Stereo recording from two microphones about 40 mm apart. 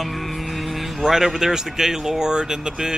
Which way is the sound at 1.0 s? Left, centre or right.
Centre.